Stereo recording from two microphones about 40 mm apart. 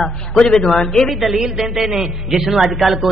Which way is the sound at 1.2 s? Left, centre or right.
Centre.